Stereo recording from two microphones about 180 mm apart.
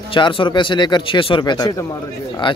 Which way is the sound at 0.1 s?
25° left (ahead or behind).